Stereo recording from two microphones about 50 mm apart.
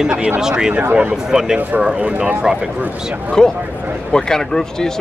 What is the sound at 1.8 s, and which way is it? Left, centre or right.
Speech, right.